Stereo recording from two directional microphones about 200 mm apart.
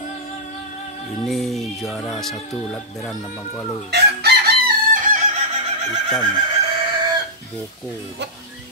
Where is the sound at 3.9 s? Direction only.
55° right (ahead or behind).